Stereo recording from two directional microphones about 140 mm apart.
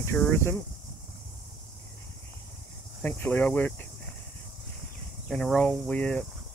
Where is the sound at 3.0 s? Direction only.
15° left (ahead or behind).